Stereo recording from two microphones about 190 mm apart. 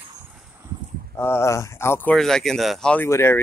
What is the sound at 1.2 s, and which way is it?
Speech, 15° left (ahead or behind).